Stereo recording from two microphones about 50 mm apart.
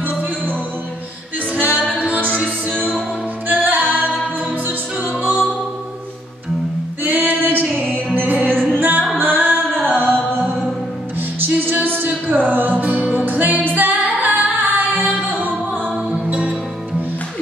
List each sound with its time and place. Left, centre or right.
0.1 s music: right
1.6 s music: right
7.0 s music: right
8.7 s singing: right
9.2 s music: right
13.7 s female singing: right
16.1 s music: right